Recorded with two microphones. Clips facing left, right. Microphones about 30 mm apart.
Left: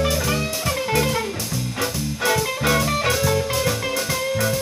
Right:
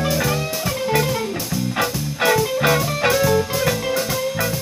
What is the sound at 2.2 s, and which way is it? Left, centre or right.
Music, right.